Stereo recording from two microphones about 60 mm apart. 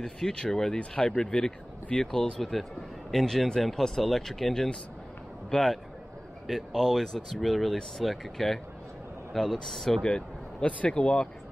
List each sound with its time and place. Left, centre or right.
0.0 s speech: centre
10.0 s speech: centre